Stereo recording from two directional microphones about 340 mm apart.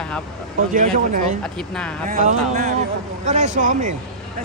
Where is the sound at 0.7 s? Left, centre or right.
Right.